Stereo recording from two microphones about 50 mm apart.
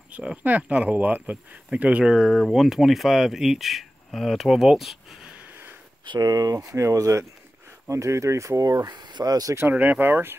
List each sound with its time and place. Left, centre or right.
0.1 s speech: centre
0.4 s speech: right
2.0 s speech: centre
6.7 s speech: right
9.2 s speech: right
9.6 s speech: right